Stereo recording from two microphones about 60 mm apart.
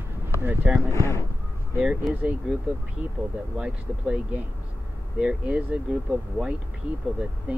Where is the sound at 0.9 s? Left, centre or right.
Left.